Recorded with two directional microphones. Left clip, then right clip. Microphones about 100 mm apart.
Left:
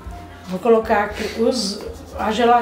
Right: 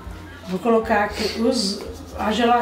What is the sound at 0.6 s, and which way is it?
Speech, 25° left (ahead or behind).